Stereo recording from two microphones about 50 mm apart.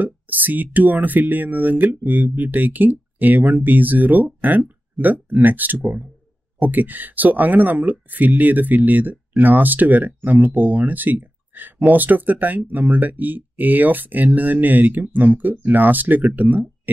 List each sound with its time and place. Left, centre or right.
0.0 s speech: right